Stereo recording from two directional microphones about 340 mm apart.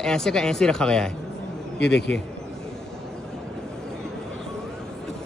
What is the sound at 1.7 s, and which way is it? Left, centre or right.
Speech, left.